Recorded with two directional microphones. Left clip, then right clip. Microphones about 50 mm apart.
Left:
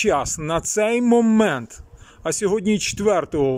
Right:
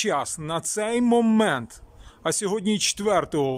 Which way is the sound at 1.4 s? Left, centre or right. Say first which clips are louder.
Left 3 dB; centre.